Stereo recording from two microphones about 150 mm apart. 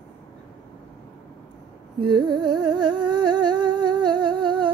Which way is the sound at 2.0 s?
30° right (ahead or behind).